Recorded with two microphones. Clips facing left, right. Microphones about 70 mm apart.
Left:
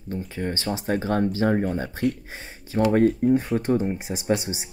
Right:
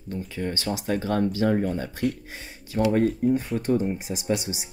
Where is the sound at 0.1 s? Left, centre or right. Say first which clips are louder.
Left 1 dB; left.